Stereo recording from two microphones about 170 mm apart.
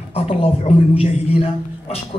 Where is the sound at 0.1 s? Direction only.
35° left (ahead or behind).